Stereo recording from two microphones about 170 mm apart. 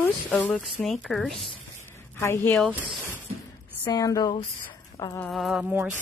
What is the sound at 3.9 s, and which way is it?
Speech, 20° left (ahead or behind).